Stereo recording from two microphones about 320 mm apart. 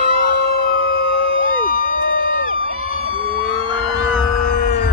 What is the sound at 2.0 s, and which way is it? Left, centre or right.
Crowd, left.